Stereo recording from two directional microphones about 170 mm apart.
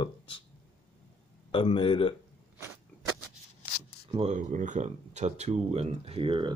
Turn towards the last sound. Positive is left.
turn(degrees=-30)  # may be behind; listen again after turning